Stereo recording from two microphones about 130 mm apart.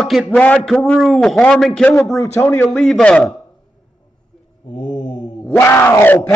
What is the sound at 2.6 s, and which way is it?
Speech, centre (ahead or behind).